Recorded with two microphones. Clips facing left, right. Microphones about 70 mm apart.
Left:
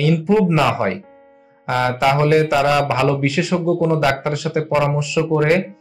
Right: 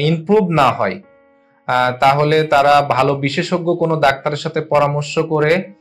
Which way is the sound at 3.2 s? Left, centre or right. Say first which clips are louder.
Right 1 dB; right.